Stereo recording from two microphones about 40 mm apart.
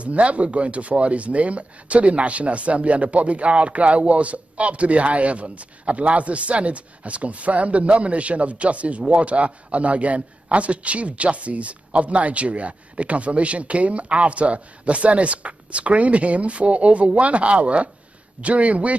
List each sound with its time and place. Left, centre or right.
0.0 s speech: right